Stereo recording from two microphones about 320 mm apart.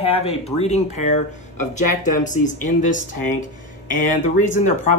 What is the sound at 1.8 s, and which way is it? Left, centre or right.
Speech, left.